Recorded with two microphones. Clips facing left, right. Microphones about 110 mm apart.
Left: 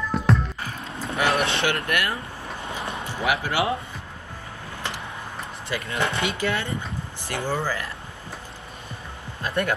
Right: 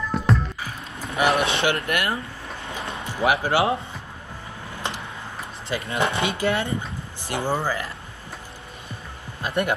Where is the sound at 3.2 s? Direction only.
25° right (ahead or behind).